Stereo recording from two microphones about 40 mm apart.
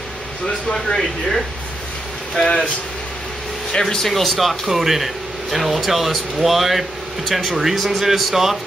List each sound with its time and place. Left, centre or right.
0.7 s speech: centre
2.3 s speech: centre
3.8 s speech: centre